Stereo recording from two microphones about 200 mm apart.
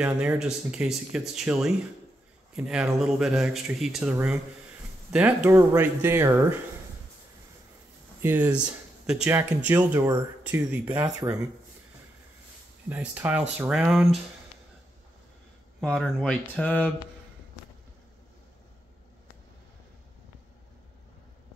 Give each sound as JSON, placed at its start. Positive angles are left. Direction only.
{"t": 0.0, "sound": "speech", "side_deg": -5}
{"t": 8.2, "sound": "speech", "side_deg": -10}
{"t": 11.1, "sound": "speech", "side_deg": -20}
{"t": 12.9, "sound": "speech", "side_deg": -10}
{"t": 15.8, "sound": "speech", "side_deg": 5}